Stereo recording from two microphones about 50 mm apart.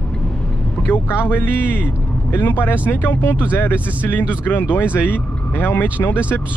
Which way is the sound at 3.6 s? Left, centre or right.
Left.